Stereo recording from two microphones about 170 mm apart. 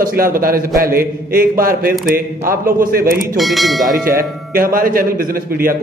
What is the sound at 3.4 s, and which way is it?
Speech, centre (ahead or behind).